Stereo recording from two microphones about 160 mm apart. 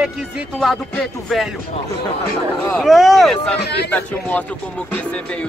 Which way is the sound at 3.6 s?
90° left.